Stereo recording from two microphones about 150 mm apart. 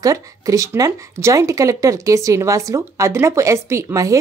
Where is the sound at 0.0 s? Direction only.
25° right (ahead or behind).